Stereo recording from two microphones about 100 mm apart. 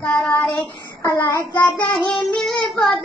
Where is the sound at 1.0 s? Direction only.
35° left (ahead or behind).